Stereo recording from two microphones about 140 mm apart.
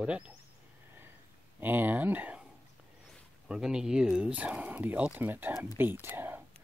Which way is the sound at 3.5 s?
5° right (ahead or behind).